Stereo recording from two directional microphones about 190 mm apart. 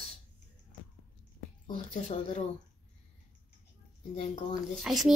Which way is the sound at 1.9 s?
40° left (ahead or behind).